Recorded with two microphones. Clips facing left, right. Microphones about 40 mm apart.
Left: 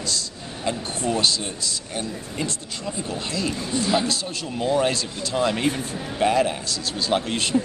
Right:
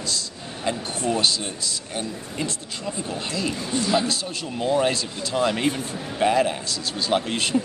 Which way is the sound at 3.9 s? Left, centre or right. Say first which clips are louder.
Even; centre.